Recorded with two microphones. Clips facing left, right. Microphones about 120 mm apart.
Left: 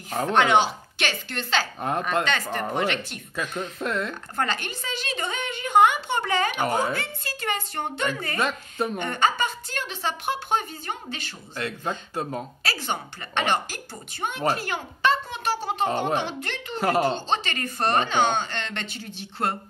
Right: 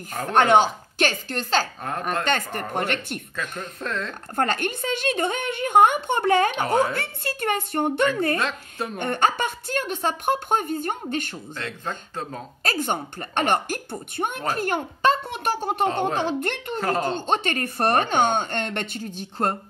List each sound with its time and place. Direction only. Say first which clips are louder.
0.3 s a woman's voice: right 3 dB; 45° right (ahead or behind)
1.8 s a woman's voice: left 3 dB; 20° left (ahead or behind)
2.2 s a woman's voice: right 1 dB; 50° right (ahead or behind)
3.3 s speech: left 6 dB; 10° left (ahead or behind)
4.4 s a woman's voice: right 5 dB; 50° right (ahead or behind)
6.5 s speech: right 3 dB; centre (ahead or behind)
7.0 s a woman's voice: right 4 dB; 60° right (ahead or behind)
8.4 s speech: left 2 dB; centre (ahead or behind)
8.9 s a woman's voice: right 4 dB; 55° right (ahead or behind)
11.5 s speech: left 3 dB; 10° left (ahead or behind)
12.6 s a woman's voice: right 7 dB; 50° right (ahead or behind)
15.2 s a woman's voice: right 2 dB; 60° right (ahead or behind)
16.8 s speech: left 3 dB; 5° left (ahead or behind)
17.1 s a woman's voice: right 3 dB; 55° right (ahead or behind)